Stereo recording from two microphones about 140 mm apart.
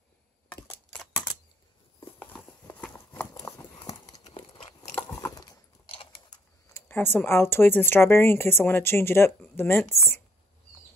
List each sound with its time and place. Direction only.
0.5 s camera: 10° left (ahead or behind)
2.7 s horse: 10° left (ahead or behind)
3.3 s clip-clop: 20° left (ahead or behind)
4.4 s biting: 35° left (ahead or behind)
4.9 s a sound: 15° left (ahead or behind)
6.7 s speech: 15° left (ahead or behind)